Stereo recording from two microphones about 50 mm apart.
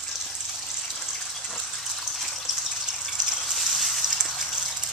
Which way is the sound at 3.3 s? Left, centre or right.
Centre.